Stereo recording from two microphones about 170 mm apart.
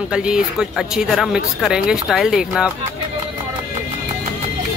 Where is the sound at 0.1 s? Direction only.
5° right (ahead or behind).